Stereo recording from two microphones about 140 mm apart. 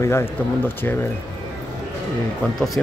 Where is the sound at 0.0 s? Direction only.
20° left (ahead or behind).